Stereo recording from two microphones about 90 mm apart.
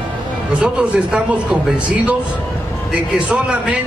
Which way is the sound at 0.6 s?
10° right (ahead or behind).